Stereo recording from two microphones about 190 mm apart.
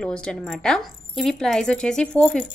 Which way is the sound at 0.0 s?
5° left (ahead or behind).